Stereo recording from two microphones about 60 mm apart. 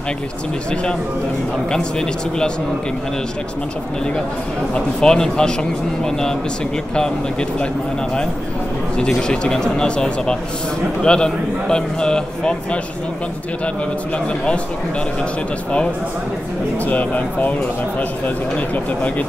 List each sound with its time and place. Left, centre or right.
1.7 s a man's voice: centre
4.7 s a man's voice: centre
8.9 s a man's voice: centre
14.1 s speech: centre
16.8 s speech: left